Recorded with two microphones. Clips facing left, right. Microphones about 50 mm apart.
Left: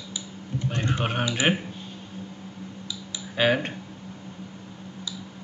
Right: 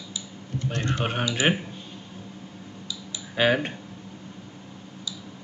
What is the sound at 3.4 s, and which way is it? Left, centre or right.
Speech, centre.